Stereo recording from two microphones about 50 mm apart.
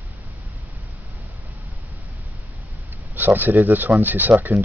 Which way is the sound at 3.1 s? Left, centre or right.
Right.